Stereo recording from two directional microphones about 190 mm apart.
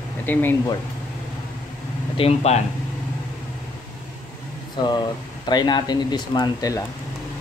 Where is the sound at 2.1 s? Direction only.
35° left (ahead or behind).